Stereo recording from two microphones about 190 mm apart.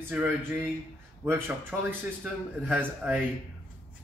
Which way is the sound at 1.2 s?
10° right (ahead or behind).